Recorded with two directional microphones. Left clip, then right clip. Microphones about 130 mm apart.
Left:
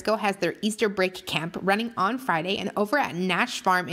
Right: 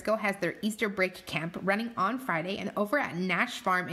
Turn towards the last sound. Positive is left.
turn(degrees=35)  # may be behind; listen again after turning